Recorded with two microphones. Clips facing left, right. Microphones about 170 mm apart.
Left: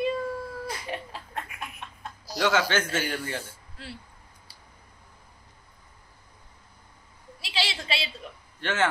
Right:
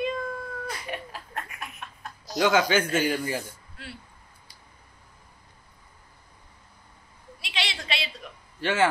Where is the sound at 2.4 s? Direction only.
15° right (ahead or behind).